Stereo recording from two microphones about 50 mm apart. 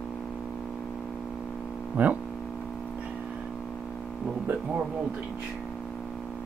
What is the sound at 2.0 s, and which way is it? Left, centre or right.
Speech, right.